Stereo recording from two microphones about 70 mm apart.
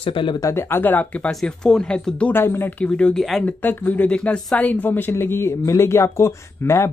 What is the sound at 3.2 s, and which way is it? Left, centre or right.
Speech, centre.